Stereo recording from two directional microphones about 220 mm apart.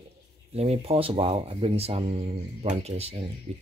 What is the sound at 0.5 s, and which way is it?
Speech, 30° right (ahead or behind).